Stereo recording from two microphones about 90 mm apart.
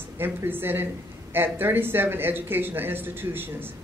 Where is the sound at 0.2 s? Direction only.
25° right (ahead or behind).